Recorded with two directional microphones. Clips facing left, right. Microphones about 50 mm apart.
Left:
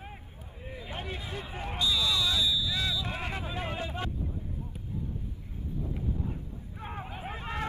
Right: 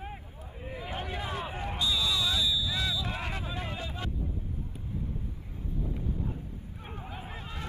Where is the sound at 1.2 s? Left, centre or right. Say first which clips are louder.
Right 4 dB; right.